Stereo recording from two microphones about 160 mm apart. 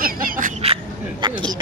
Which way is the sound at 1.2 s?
30° right (ahead or behind).